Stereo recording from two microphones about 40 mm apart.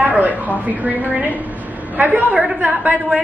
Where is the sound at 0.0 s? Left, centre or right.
Right.